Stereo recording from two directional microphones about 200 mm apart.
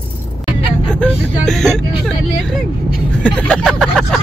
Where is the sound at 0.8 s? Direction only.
5° left (ahead or behind).